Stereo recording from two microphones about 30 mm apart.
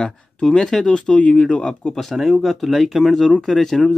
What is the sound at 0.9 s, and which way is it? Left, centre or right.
Speech, left.